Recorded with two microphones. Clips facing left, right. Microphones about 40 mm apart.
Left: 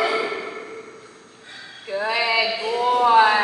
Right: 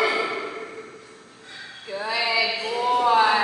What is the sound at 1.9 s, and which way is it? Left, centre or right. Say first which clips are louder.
Female singing: left 5 dB; left.